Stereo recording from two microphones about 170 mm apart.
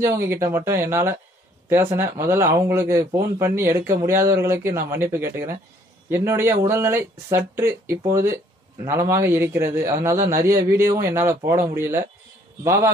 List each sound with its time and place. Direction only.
0.0 s a man's voice: 15° right (ahead or behind)